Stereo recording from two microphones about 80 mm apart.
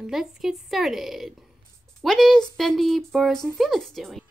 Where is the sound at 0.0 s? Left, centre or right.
Centre.